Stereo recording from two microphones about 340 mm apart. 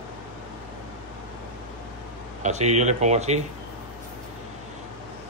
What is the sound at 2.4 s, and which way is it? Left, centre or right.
Speech, centre.